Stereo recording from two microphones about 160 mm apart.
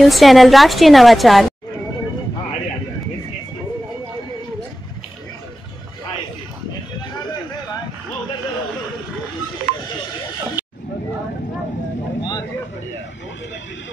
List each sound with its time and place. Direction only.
0.0 s a woman's voice: centre (ahead or behind)
10.6 s hubbub: 15° right (ahead or behind)
12.2 s a sound: 25° left (ahead or behind)